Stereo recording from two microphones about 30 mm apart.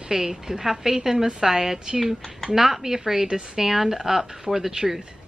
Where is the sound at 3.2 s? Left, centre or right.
Right.